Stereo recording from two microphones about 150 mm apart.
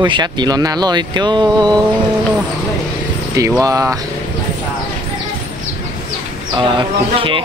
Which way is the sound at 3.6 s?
20° right (ahead or behind).